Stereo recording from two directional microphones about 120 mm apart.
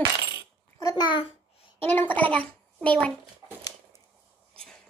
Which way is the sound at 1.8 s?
15° left (ahead or behind).